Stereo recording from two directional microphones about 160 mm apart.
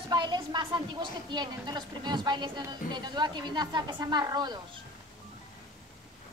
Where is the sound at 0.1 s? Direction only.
25° right (ahead or behind).